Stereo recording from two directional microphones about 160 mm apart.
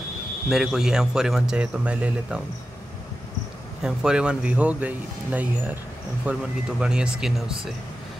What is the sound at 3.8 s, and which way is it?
Speech, 5° right (ahead or behind).